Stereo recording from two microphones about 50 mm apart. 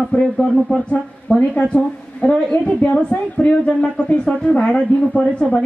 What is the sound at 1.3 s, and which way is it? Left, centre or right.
A woman's voice, left.